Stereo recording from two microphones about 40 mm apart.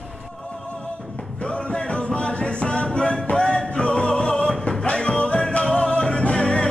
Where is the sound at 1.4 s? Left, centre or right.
Left.